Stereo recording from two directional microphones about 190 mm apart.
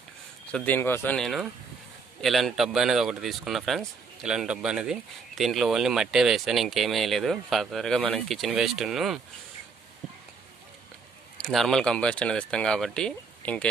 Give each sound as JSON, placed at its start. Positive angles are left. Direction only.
{"t": 0.5, "sound": "speech", "side_deg": 5}
{"t": 11.4, "sound": "speech", "side_deg": 0}